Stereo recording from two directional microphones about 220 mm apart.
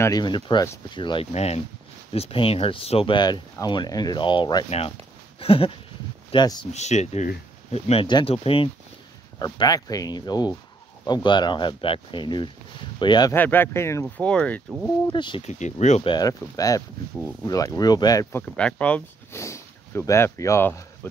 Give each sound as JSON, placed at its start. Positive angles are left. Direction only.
{"t": 0.0, "sound": "speech", "side_deg": 20}
{"t": 6.7, "sound": "speech", "side_deg": 30}
{"t": 15.0, "sound": "speech", "side_deg": 20}
{"t": 18.4, "sound": "speech", "side_deg": 5}